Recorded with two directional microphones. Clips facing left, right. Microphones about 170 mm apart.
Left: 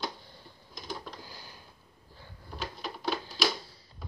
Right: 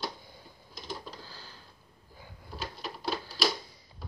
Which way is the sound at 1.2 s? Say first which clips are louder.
Left 1 dB; 15° left (ahead or behind).